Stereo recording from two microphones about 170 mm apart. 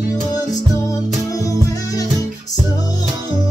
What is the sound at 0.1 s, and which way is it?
Music, 20° left (ahead or behind).